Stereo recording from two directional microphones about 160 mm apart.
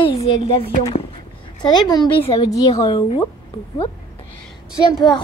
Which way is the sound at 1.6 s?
30° left (ahead or behind).